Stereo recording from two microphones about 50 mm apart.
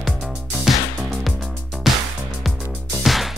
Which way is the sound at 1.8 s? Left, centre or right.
Centre.